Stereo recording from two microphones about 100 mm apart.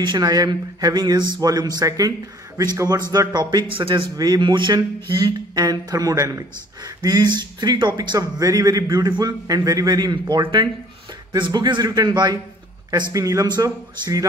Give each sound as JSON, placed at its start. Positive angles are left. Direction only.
{"t": 0.0, "sound": "a man's voice", "side_deg": -45}
{"t": 4.2, "sound": "a man's voice", "side_deg": -45}
{"t": 13.1, "sound": "speech", "side_deg": -35}